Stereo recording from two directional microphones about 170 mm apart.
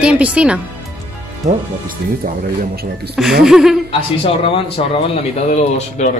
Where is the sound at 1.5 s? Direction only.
55° right (ahead or behind).